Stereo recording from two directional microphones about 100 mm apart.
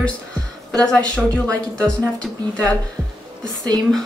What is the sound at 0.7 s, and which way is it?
Speech, 5° left (ahead or behind).